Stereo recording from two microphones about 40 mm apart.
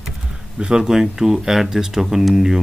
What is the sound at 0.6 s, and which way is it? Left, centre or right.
Speech, centre.